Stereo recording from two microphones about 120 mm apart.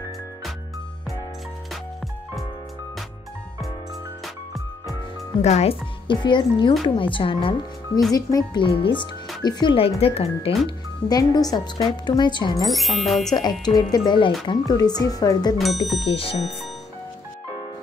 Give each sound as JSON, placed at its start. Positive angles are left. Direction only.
{"t": 5.4, "sound": "speech", "side_deg": 65}
{"t": 6.0, "sound": "speech", "side_deg": 40}
{"t": 8.1, "sound": "speech", "side_deg": 30}
{"t": 8.6, "sound": "speech", "side_deg": 45}
{"t": 9.8, "sound": "speech", "side_deg": 55}
{"t": 11.1, "sound": "speech", "side_deg": 35}
{"t": 12.6, "sound": "speech", "side_deg": 0}
{"t": 13.3, "sound": "speech", "side_deg": 35}
{"t": 15.5, "sound": "speech", "side_deg": 0}
{"t": 16.1, "sound": "speech", "side_deg": 50}